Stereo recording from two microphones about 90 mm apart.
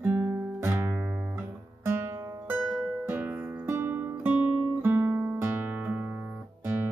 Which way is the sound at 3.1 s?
25° right (ahead or behind).